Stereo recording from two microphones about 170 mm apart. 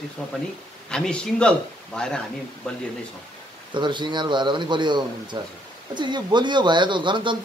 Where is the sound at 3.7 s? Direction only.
25° right (ahead or behind).